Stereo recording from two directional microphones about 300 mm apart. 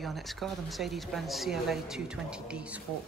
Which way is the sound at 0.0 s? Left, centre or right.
Centre.